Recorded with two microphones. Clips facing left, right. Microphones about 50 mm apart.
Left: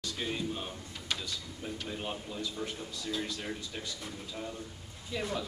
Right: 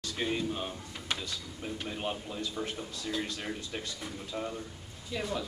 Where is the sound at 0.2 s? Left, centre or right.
Centre.